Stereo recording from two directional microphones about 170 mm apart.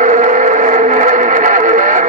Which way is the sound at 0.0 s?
45° right (ahead or behind).